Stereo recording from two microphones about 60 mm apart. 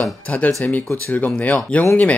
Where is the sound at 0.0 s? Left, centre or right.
Left.